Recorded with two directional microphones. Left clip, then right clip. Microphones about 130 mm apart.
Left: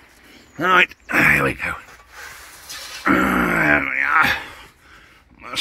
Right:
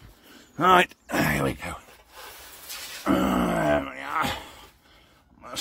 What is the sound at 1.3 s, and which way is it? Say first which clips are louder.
Speech: left 9 dB; 20° right (ahead or behind).